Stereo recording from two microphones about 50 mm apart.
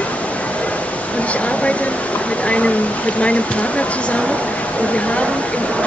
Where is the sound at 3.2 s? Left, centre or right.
Left.